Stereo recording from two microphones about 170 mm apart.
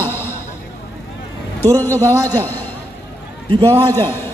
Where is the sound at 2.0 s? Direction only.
10° left (ahead or behind).